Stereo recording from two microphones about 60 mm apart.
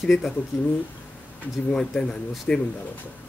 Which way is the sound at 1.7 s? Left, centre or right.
Centre.